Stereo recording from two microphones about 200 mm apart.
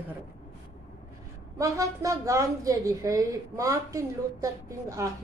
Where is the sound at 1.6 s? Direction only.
15° right (ahead or behind).